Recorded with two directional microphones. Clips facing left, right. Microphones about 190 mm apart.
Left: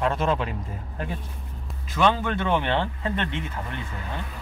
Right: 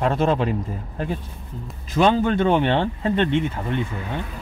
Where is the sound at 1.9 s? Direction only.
30° right (ahead or behind).